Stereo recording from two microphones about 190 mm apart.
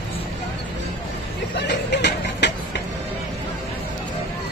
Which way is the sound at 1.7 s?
65° left (ahead or behind).